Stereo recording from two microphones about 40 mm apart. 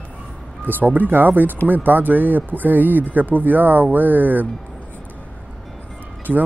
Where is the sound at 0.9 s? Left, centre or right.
Right.